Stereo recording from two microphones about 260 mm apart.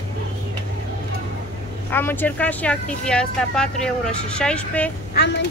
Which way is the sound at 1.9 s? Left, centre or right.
Centre.